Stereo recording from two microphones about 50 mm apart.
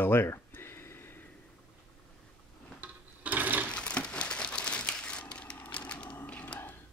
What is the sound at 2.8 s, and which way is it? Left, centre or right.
Sewing machine, right.